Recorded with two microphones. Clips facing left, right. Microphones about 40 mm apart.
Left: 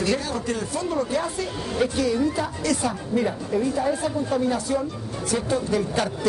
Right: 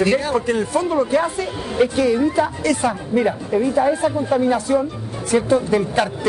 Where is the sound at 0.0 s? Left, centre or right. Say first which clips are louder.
Right 7 dB; right.